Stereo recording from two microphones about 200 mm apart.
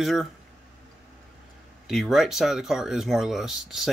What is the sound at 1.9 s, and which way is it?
Speech, centre (ahead or behind).